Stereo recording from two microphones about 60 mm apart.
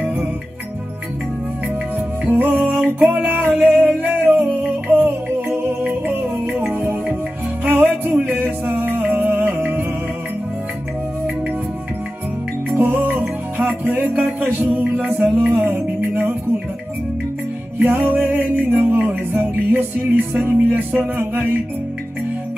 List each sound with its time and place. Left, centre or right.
2.3 s music: right
12.7 s music: right
13.2 s music: right
17.7 s music: right